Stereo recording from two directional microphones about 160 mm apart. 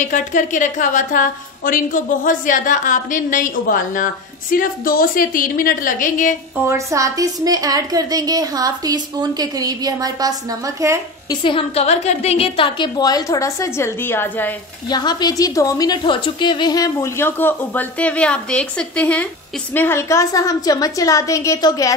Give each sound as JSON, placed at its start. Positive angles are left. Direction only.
{"t": 0.0, "sound": "a woman's voice", "side_deg": 50}
{"t": 6.5, "sound": "a woman's voice", "side_deg": -15}
{"t": 11.2, "sound": "a woman's voice", "side_deg": 30}
{"t": 14.9, "sound": "a woman's voice", "side_deg": 25}